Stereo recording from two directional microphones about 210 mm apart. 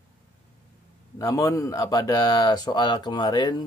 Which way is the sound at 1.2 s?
15° left (ahead or behind).